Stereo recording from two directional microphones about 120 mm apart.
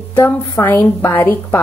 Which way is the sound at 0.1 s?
20° left (ahead or behind).